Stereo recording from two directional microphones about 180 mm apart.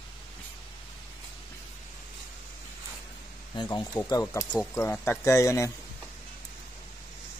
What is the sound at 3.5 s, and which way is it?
Speech, 25° left (ahead or behind).